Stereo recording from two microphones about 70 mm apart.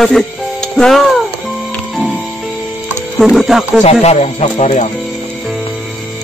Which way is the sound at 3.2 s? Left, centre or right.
Centre.